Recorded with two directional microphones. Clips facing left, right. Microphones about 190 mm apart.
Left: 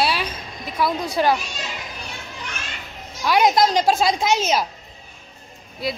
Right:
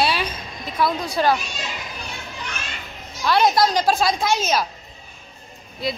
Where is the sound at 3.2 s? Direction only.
15° left (ahead or behind).